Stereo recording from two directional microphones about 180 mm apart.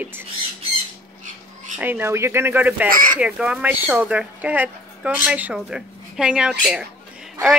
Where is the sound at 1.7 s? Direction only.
10° right (ahead or behind).